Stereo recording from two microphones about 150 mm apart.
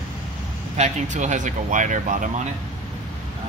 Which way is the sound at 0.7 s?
50° right (ahead or behind).